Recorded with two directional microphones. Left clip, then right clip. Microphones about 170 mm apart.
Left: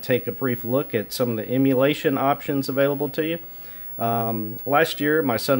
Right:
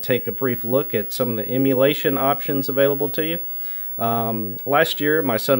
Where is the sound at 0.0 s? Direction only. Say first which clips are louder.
Right 1 dB; 20° right (ahead or behind).